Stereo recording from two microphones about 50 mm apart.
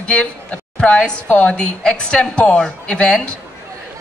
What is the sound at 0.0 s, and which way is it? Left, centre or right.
A woman's voice, left.